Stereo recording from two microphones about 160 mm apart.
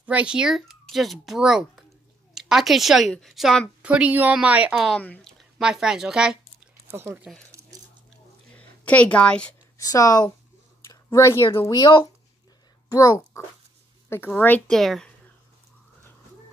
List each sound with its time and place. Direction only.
0.0 s a woman's voice: 10° right (ahead or behind); by 5.3 s 10° left (ahead or behind)
5.6 s speech: 5° right (ahead or behind)
8.5 s a woman's voice: 10° left (ahead or behind)
9.8 s a woman's voice: 20° left (ahead or behind); by 15.0 s centre (ahead or behind)